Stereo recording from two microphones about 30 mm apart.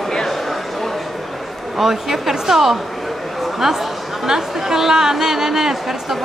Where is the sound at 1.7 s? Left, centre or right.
Centre.